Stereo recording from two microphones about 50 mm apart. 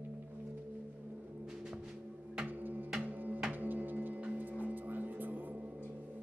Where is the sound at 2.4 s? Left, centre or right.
Right.